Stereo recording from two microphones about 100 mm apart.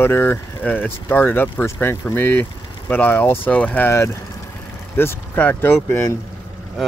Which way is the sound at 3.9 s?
30° left (ahead or behind).